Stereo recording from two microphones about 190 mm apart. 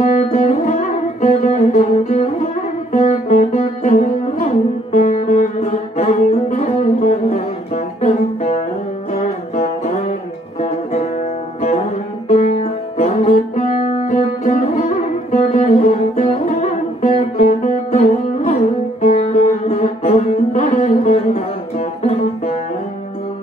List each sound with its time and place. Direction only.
0.0 s music: 40° left (ahead or behind)
10.6 s music: 35° left (ahead or behind)
12.3 s music: 35° left (ahead or behind)